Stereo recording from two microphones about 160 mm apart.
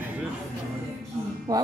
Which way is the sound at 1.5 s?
25° right (ahead or behind).